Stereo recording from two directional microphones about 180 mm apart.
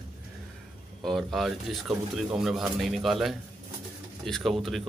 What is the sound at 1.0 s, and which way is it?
A man's voice, centre (ahead or behind).